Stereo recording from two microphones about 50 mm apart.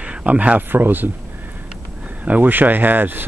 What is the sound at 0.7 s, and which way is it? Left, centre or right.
Speech, right.